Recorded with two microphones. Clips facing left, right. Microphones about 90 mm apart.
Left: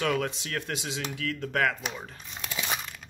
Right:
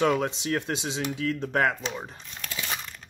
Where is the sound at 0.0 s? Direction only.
20° right (ahead or behind).